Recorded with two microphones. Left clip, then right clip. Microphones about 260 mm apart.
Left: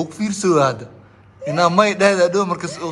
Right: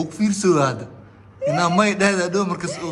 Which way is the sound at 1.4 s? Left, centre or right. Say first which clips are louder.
Left 3 dB; centre.